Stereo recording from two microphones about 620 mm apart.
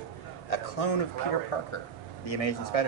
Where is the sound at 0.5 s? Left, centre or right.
Left.